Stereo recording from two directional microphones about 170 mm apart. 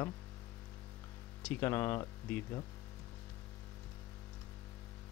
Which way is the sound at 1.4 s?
15° left (ahead or behind).